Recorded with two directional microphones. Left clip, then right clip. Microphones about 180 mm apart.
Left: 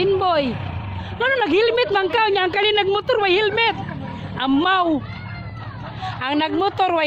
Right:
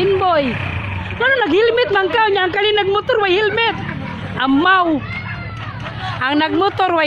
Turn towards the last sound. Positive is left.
turn(degrees=5)  # may be behind; listen again after turning